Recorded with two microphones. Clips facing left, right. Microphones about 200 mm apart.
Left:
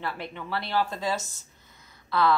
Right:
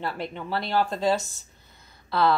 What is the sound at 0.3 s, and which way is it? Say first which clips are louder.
Speech: right 2 dB; 40° right (ahead or behind).